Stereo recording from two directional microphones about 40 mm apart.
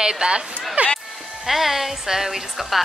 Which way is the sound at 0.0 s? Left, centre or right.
Centre.